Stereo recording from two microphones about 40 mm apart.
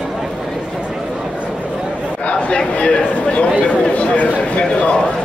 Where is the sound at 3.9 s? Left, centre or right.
Left.